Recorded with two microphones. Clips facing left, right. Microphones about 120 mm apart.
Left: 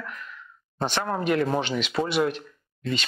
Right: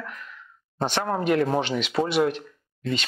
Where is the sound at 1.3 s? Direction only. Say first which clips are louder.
Right 2 dB; 40° right (ahead or behind).